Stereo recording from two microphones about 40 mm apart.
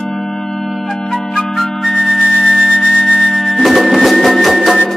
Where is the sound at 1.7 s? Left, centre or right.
Centre.